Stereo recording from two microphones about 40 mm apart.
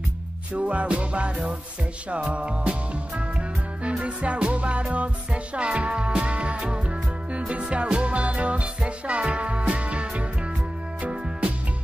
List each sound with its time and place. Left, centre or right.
0.6 s music: right
3.8 s music: right